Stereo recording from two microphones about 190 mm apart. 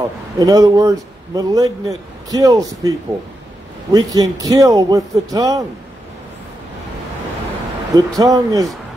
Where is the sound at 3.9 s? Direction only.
20° right (ahead or behind).